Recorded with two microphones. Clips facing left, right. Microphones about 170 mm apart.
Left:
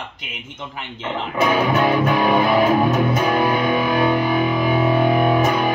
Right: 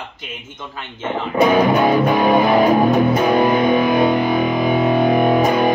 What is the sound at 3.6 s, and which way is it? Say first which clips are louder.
Music: right 4 dB; 40° right (ahead or behind).